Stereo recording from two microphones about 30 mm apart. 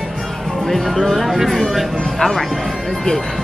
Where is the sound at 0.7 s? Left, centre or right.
Centre.